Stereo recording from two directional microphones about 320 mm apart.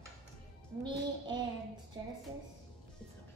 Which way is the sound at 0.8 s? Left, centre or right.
Centre.